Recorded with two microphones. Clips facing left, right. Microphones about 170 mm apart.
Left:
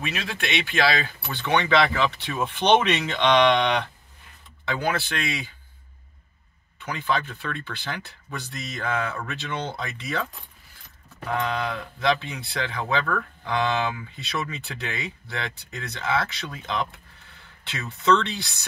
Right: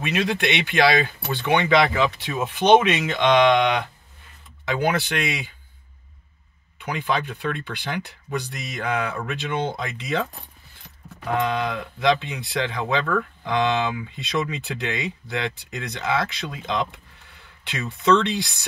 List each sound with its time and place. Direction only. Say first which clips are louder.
0.0 s speech: right 7 dB; 20° right (ahead or behind)
6.8 s speech: right 2 dB; 15° right (ahead or behind)
11.3 s speech: right 3 dB; 15° right (ahead or behind)